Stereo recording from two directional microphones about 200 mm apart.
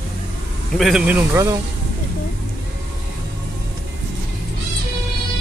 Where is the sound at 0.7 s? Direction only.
Centre (ahead or behind).